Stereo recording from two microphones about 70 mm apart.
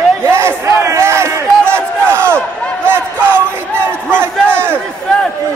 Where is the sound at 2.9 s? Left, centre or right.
Right.